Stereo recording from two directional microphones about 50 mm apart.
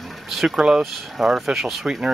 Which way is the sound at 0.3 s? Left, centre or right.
Centre.